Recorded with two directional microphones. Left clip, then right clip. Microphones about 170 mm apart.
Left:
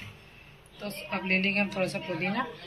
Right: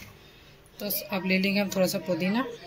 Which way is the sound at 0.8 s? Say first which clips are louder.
Right 2 dB; 75° right (ahead or behind).